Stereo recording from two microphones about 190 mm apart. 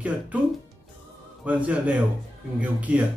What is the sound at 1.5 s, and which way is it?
A man's voice, 5° right (ahead or behind).